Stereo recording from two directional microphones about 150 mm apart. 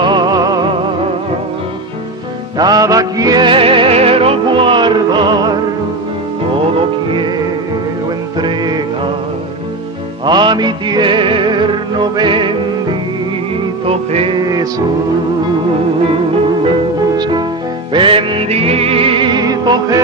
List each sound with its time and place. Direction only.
0.0 s music: 30° right (ahead or behind)
2.5 s music: 25° right (ahead or behind)
7.1 s music: 30° right (ahead or behind)
8.4 s music: 30° right (ahead or behind)
10.2 s music: 30° right (ahead or behind)
13.8 s music: 40° right (ahead or behind)
14.4 s music: 25° right (ahead or behind)
17.1 s music: 30° right (ahead or behind)